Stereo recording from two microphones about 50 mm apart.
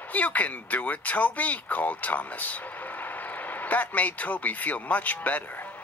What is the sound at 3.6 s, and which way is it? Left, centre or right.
Speech, left.